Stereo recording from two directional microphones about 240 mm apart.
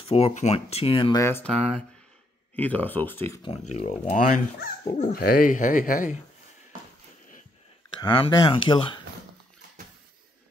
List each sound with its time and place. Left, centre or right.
0.0 s speech: left; by 3.3 s centre
3.4 s speech: left
8.0 s speech: centre